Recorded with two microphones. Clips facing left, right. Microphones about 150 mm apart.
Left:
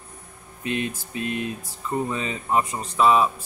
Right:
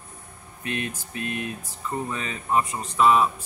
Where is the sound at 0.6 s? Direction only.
25° left (ahead or behind).